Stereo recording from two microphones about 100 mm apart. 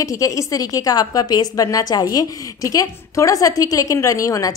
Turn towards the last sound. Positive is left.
turn(degrees=35)  # may be behind; listen again after turning